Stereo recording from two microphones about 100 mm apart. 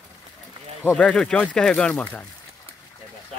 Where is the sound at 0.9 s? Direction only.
10° left (ahead or behind).